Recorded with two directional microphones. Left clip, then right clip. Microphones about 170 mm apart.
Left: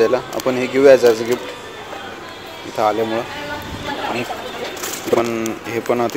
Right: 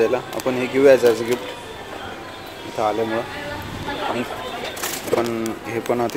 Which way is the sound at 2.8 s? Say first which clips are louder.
Left 4 dB; 25° left (ahead or behind).